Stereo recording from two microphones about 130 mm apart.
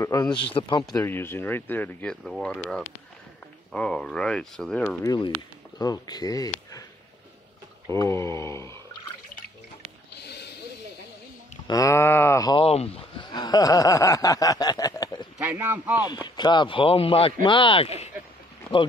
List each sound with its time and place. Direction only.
0.0 s speech: 30° left (ahead or behind)
0.5 s a man's voice: 40° left (ahead or behind)
1.0 s speech: 15° left (ahead or behind)
5.0 s a man's voice: 30° left (ahead or behind)
7.9 s speech: 20° left (ahead or behind)
11.6 s speech: 25° left (ahead or behind)
12.5 s speech: 50° left (ahead or behind)
13.3 s snicker: 30° left (ahead or behind)
15.3 s speech: 20° right (ahead or behind)
16.3 s a man's voice: 35° left (ahead or behind)